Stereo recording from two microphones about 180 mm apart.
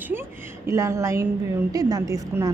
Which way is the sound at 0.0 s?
10° right (ahead or behind).